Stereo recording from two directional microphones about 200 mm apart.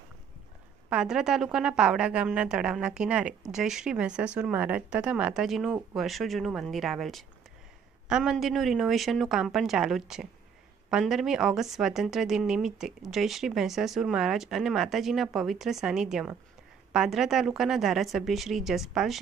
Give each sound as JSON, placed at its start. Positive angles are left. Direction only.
{"t": 0.8, "sound": "speech", "side_deg": -5}